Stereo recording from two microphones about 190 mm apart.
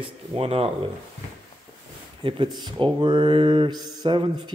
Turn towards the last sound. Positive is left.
turn(degrees=-25)  # may be behind; listen again after turning